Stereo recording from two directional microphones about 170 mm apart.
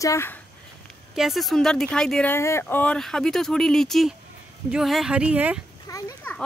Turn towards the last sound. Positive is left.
turn(degrees=20)  # may be behind; listen again after turning